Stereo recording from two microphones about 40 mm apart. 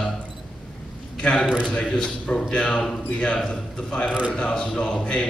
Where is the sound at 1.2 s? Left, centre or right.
Left.